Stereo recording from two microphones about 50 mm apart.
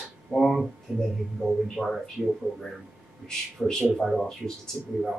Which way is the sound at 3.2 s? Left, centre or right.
Centre.